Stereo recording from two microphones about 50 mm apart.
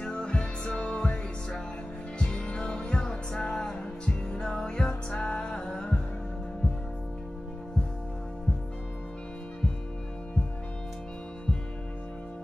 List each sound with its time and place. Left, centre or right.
0.0 s music: centre